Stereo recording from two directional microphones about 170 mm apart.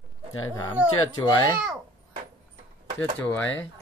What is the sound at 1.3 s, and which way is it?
Speech, 20° left (ahead or behind).